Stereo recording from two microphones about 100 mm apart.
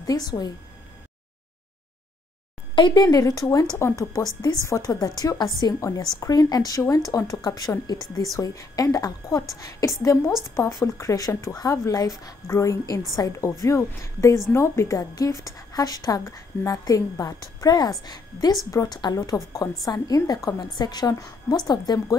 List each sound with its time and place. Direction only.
0.0 s a woman's voice: 40° left (ahead or behind)
2.7 s a woman's voice: 45° left (ahead or behind)